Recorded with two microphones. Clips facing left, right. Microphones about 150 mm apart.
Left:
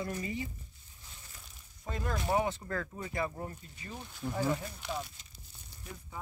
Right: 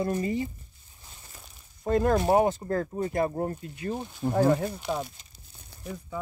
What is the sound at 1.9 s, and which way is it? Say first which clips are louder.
Speech: right 11 dB; 55° right (ahead or behind).